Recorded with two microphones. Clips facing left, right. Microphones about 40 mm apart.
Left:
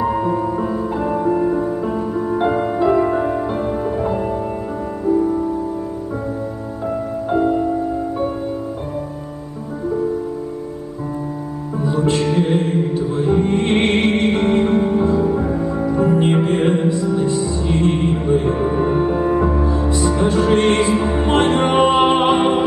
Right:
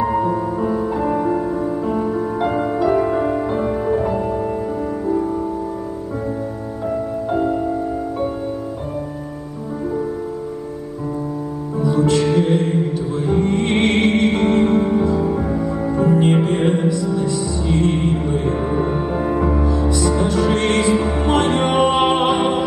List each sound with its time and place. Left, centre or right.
0.0 s music: centre
2.6 s music: left
3.3 s music: centre
6.9 s music: left
11.8 s music: left
13.3 s music: centre
14.8 s music: centre
15.3 s music: centre
15.9 s music: left
16.9 s music: left; by 19.6 s centre
19.6 s music: left